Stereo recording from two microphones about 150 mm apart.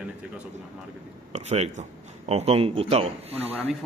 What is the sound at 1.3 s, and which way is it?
A man's voice, 45° right (ahead or behind).